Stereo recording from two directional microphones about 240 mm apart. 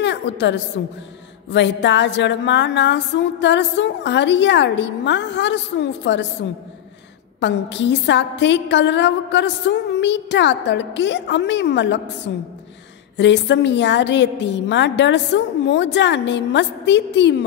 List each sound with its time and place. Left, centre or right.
0.0 s a woman's voice: left
7.3 s a woman's voice: left